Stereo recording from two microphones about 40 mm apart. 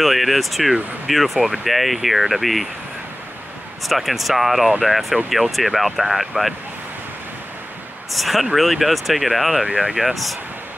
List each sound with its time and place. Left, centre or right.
0.0 s speech: centre
3.8 s speech: centre
8.1 s speech: centre
9.8 s speech: centre
10.0 s speech: centre